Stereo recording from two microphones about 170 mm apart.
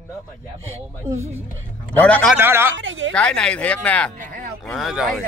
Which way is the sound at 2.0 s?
5° left (ahead or behind).